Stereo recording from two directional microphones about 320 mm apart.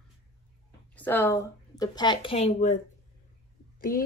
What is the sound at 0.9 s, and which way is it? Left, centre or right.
Speech, centre.